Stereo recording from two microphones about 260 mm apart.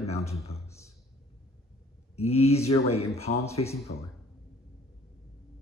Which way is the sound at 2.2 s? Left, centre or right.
Left.